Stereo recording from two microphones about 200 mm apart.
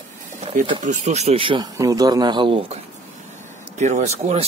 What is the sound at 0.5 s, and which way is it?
A man's voice, 30° right (ahead or behind).